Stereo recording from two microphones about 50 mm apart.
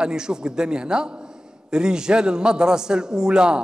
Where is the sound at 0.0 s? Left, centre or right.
Centre.